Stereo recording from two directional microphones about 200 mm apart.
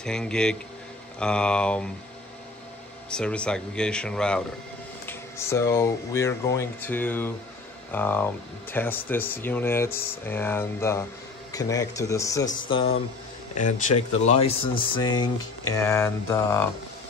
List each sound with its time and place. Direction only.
0.0 s speech: 5° left (ahead or behind)
3.1 s speech: 5° left (ahead or behind)
13.6 s speech: 40° left (ahead or behind); by 16.6 s 15° left (ahead or behind)